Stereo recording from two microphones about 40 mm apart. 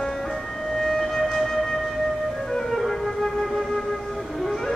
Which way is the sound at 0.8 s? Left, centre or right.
Centre.